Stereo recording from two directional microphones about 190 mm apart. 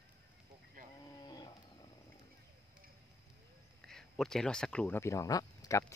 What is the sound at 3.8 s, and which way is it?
Speech, centre (ahead or behind).